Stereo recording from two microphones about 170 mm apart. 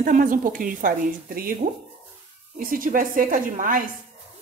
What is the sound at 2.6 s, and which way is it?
Speech, 55° right (ahead or behind).